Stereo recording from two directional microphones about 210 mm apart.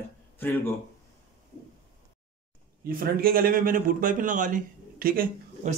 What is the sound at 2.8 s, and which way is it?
A man's voice, 45° right (ahead or behind).